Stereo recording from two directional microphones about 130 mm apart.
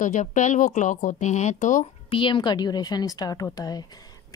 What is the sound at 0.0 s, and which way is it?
Speech, 75° left (ahead or behind).